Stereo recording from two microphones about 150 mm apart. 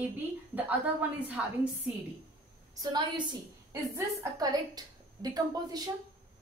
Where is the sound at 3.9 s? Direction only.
20° right (ahead or behind).